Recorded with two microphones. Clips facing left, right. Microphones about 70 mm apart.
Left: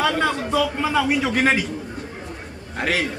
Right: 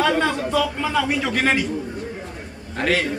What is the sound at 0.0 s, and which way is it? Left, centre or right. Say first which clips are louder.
A man's voice: right 1 dB; centre.